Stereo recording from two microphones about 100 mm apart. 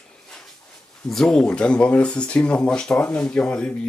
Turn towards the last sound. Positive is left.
turn(degrees=10)  # may be behind; listen again after turning